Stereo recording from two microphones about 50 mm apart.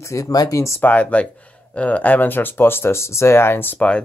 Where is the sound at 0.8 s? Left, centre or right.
Left.